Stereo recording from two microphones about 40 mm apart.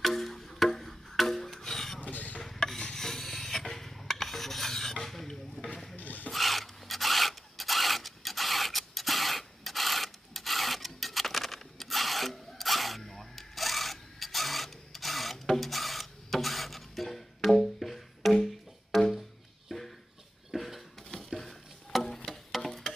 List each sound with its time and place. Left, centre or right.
0.0 s music: centre
2.0 s a sound: left
2.4 s rub: centre
5.0 s stir: centre
5.9 s rub: left
6.3 s filing: centre
18.9 s music: centre
19.7 s a sound: centre